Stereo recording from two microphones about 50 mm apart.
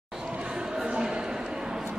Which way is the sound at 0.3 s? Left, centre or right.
Right.